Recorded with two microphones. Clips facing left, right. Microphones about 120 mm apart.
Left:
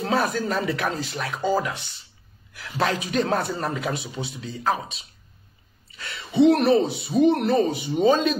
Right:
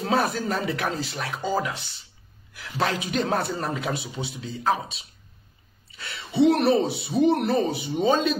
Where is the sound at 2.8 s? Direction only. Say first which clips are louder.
Left 2 dB; 35° left (ahead or behind).